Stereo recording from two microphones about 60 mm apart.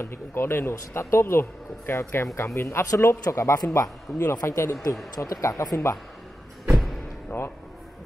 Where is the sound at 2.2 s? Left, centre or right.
Left.